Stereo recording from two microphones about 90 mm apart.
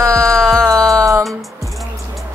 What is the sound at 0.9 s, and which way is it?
Music, 35° right (ahead or behind).